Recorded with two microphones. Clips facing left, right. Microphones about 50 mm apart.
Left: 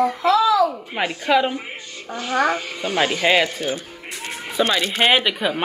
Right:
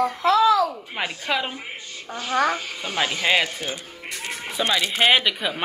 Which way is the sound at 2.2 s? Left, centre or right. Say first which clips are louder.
Left 2 dB; left.